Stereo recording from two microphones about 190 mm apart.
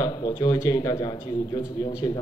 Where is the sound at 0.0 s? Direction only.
25° left (ahead or behind).